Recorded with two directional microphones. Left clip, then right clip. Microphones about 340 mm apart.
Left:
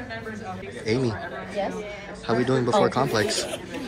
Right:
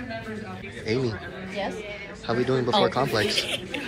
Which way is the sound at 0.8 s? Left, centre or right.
Centre.